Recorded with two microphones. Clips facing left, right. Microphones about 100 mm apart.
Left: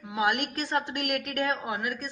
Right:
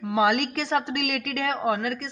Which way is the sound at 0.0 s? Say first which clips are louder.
Right 5 dB; 90° right.